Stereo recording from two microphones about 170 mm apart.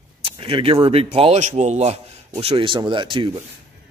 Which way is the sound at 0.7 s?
30° right (ahead or behind).